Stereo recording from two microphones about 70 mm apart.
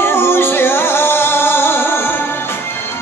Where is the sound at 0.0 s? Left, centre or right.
Left.